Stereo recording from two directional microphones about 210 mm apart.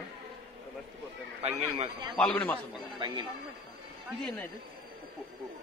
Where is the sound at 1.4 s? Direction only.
25° right (ahead or behind).